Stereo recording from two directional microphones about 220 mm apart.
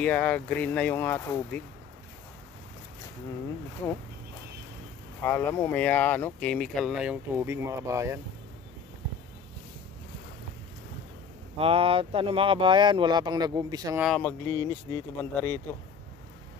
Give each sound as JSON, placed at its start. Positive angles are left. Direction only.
{"t": 0.0, "sound": "speech", "side_deg": 5}
{"t": 5.2, "sound": "speech", "side_deg": 10}
{"t": 11.5, "sound": "speech", "side_deg": -25}
{"t": 14.0, "sound": "speech", "side_deg": 5}